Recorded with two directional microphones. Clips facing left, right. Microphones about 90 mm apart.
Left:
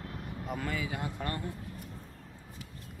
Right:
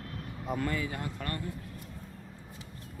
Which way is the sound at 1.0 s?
20° left (ahead or behind).